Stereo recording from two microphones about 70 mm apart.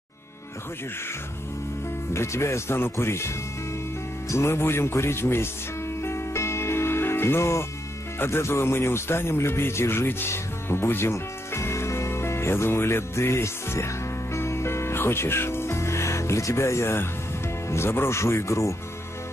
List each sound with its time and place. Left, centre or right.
2.1 s speech: left
6.0 s music: left
8.2 s speech: left